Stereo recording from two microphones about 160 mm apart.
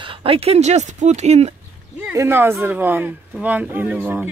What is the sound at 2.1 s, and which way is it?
Speech, 15° right (ahead or behind).